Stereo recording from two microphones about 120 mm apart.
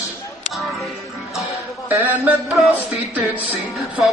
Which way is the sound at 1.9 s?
15° right (ahead or behind).